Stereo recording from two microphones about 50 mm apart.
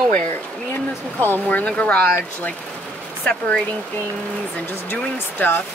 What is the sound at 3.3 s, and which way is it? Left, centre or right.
Speech, left.